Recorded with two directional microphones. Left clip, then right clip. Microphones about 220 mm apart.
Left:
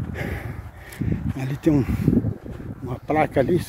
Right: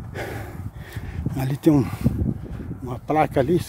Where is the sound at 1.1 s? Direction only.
25° right (ahead or behind).